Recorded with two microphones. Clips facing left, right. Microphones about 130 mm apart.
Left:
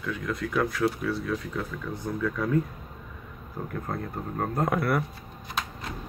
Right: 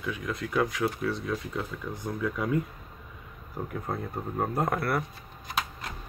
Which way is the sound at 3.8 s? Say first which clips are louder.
Even; 5° right (ahead or behind).